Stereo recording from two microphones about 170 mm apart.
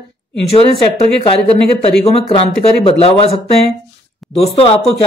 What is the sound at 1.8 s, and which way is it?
A man's voice, 35° left (ahead or behind).